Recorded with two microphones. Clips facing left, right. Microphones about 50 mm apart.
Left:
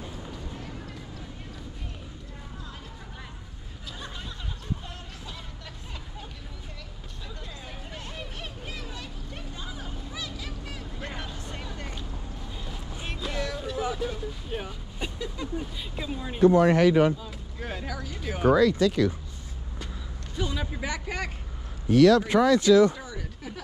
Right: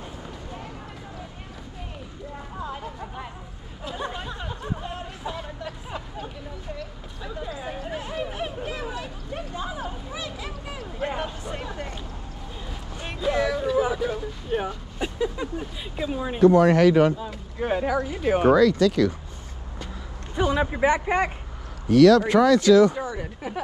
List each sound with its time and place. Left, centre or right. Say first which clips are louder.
3.8 s a sound: right 9 dB; right
7.2 s hubbub: right 10 dB; centre
11.0 s a sound: right 11 dB; right
13.0 s a sound: right 9 dB; centre
13.9 s vehicle: right 5 dB; centre
15.0 s a sound: right 7 dB; centre
16.3 s speech: right 3 dB; right
17.6 s speech: right 12 dB; right
18.5 s speech: right 1 dB; right
20.5 s speech: right 11 dB; right
21.8 s speech: right 3 dB; right
22.9 s speech: right 8 dB; right